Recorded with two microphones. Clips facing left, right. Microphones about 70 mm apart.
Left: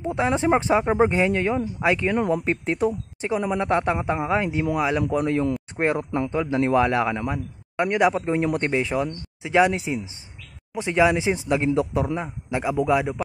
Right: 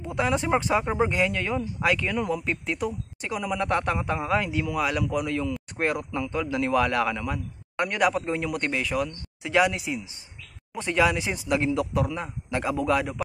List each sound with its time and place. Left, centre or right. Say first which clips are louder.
0.0 s a man's voice: left 4 dB; left
2.1 s a man's voice: left 5 dB; left
10.7 s a man's voice: left 4 dB; centre